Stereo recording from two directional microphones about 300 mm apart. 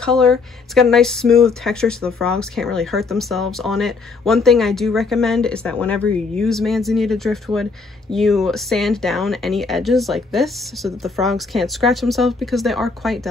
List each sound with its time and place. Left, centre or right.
0.0 s speech: centre